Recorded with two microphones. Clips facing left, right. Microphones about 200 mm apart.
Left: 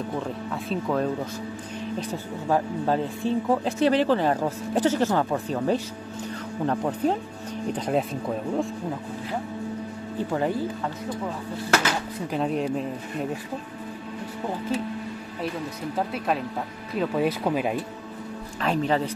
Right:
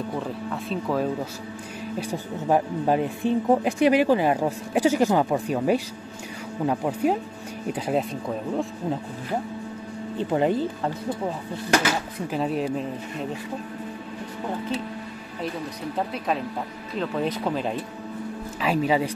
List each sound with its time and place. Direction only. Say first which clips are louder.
0.5 s speech: even; centre (ahead or behind)
2.0 s speech: right 1 dB; 15° right (ahead or behind)
10.1 s speech: right 3 dB; 20° right (ahead or behind)
11.7 s speech: right 2 dB; 5° right (ahead or behind)
16.0 s speech: even; centre (ahead or behind)
18.6 s speech: right 1 dB; 5° right (ahead or behind)